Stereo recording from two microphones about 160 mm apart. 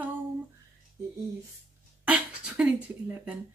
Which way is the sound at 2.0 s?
10° right (ahead or behind).